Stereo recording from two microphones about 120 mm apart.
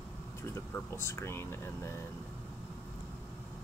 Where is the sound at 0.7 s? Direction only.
25° left (ahead or behind).